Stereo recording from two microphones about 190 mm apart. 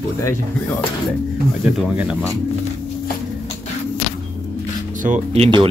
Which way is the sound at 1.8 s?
5° right (ahead or behind).